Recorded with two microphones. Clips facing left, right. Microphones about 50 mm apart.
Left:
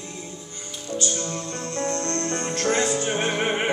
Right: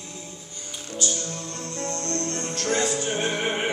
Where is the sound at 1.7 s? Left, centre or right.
Left.